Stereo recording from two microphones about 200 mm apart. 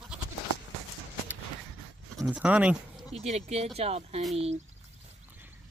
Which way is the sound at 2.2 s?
5° right (ahead or behind).